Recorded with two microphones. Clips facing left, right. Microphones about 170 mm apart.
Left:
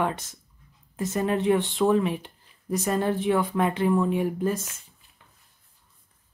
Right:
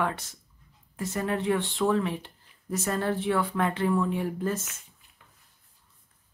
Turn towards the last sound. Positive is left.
turn(degrees=15)  # may be behind; listen again after turning